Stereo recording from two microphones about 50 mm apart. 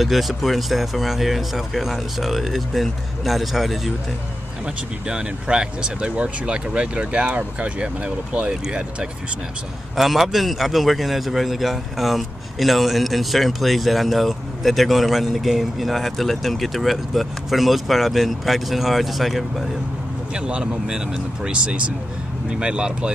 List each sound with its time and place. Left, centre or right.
0.0 s a man's voice: centre
5.0 s speech: centre
9.9 s a man's voice: centre
20.3 s speech: centre